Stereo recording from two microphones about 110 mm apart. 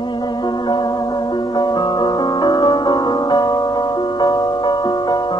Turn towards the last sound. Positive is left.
turn(degrees=40)  # may be behind; listen again after turning